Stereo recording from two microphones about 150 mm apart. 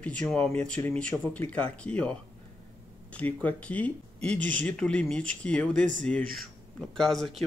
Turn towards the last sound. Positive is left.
turn(degrees=5)  # may be behind; listen again after turning